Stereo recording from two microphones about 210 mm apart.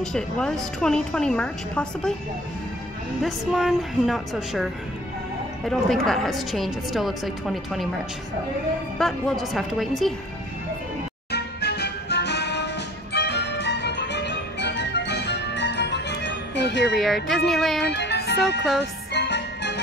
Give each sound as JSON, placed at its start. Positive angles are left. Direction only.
{"t": 0.0, "sound": "a woman's voice", "side_deg": 5}
{"t": 3.2, "sound": "a woman's voice", "side_deg": 0}
{"t": 5.7, "sound": "a woman's voice", "side_deg": 0}
{"t": 8.9, "sound": "a woman's voice", "side_deg": 0}
{"t": 11.3, "sound": "music", "side_deg": 50}
{"t": 16.9, "sound": "a woman's voice", "side_deg": 0}
{"t": 17.8, "sound": "music", "side_deg": 55}